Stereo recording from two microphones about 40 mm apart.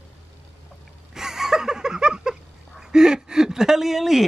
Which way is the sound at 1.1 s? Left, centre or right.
Centre.